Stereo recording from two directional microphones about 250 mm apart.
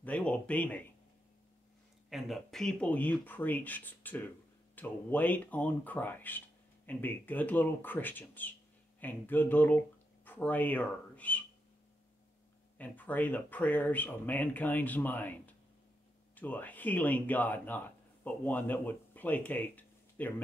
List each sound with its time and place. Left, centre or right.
0.0 s speech: centre
2.0 s speech: centre
12.7 s speech: centre